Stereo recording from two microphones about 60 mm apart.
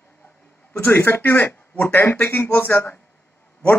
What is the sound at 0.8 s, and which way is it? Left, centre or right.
Speech, left.